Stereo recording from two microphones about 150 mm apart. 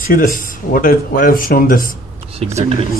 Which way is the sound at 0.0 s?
65° left (ahead or behind).